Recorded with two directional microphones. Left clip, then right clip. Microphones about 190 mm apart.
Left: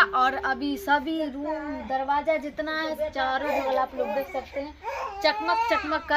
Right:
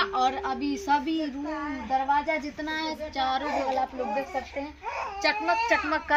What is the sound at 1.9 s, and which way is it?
Speech, 25° left (ahead or behind).